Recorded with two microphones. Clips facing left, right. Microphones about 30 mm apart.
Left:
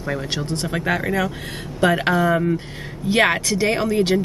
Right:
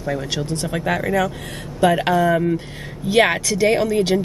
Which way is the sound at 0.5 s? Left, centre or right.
Left.